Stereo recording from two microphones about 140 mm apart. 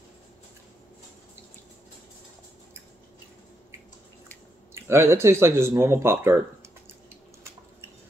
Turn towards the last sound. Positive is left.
turn(degrees=-20)  # may be behind; listen again after turning